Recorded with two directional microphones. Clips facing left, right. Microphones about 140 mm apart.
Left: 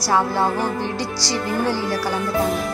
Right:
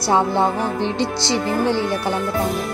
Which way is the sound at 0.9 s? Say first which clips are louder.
Right 4 dB; 20° right (ahead or behind).